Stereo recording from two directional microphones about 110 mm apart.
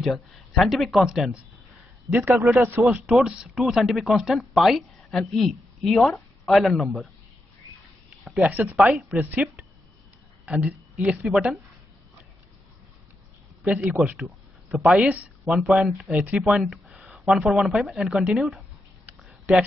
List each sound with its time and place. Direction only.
0.0 s speech: centre (ahead or behind)
2.0 s a man's voice: 20° right (ahead or behind)
2.3 s speech: 5° right (ahead or behind)
8.2 s a sound: centre (ahead or behind)
8.5 s a woman's voice: 15° right (ahead or behind)
8.7 s speech: 5° right (ahead or behind)
9.1 s a woman's voice: 15° right (ahead or behind)
13.7 s a woman's voice: 10° right (ahead or behind)
15.0 s a woman's voice: 15° right (ahead or behind)